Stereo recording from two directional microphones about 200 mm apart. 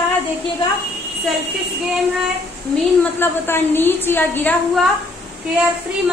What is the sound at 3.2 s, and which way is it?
A woman's voice, 10° left (ahead or behind).